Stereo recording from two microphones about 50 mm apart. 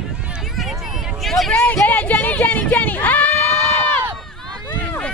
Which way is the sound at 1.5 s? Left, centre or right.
Left.